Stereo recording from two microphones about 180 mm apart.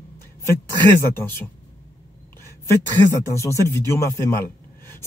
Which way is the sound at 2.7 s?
15° left (ahead or behind).